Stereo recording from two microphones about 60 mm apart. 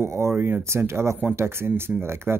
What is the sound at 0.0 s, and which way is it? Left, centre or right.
Speech, right.